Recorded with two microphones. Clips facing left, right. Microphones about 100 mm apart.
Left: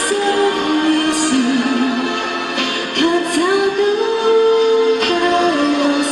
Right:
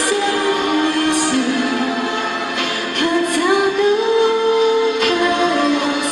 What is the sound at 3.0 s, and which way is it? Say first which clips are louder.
Music: left 2 dB; 55° left (ahead or behind).